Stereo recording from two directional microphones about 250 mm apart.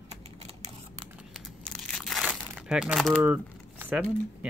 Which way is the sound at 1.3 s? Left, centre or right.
Centre.